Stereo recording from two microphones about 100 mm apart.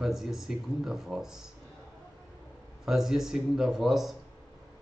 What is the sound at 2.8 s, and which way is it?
Speech, 5° right (ahead or behind).